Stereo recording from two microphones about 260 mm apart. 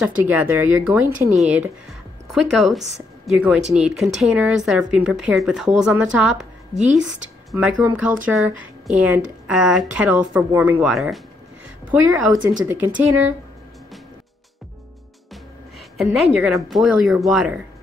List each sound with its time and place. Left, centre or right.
0.0 s a woman's voice: centre
16.0 s speech: centre